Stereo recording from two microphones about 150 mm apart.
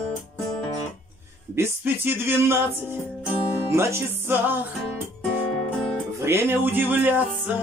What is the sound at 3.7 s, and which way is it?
Speech, 15° right (ahead or behind).